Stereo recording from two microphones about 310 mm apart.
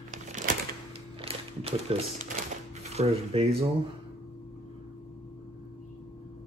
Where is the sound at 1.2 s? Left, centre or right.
Centre.